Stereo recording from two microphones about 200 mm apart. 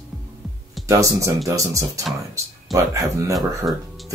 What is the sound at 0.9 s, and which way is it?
Speech, 15° right (ahead or behind).